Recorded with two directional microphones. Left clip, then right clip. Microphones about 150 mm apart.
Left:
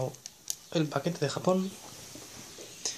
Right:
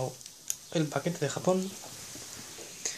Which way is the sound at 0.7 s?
15° left (ahead or behind).